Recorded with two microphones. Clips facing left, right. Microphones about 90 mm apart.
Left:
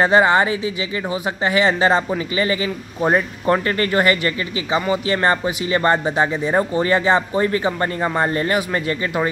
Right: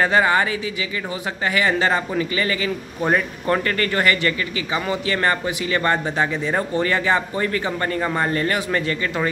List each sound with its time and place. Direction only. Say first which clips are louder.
0.0 s a man's voice: left 3 dB; 25° left (ahead or behind)